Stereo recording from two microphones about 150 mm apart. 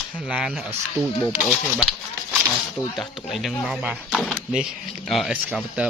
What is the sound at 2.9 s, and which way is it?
Speech, centre (ahead or behind).